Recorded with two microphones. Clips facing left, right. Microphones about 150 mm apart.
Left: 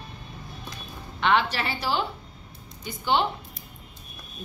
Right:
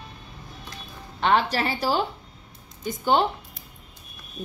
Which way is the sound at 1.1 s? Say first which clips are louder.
Right 2 dB; 40° right (ahead or behind).